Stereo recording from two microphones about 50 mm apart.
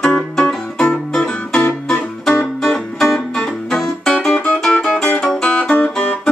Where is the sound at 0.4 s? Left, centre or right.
Centre.